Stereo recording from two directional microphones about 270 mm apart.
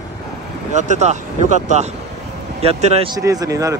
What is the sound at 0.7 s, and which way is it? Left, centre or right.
A man's voice, right.